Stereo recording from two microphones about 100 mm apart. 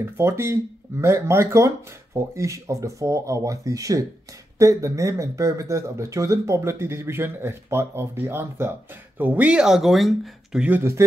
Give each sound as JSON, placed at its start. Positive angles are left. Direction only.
{"t": 0.0, "sound": "speech", "side_deg": -25}
{"t": 9.2, "sound": "speech", "side_deg": -15}
{"t": 10.8, "sound": "speech", "side_deg": -25}